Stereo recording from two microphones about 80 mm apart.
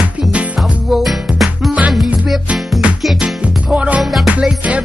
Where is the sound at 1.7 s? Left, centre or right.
Centre.